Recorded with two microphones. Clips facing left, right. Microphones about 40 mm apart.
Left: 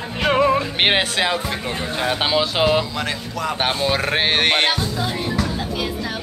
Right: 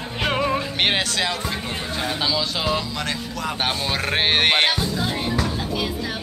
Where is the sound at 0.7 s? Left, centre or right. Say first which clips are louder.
Left 3 dB; left.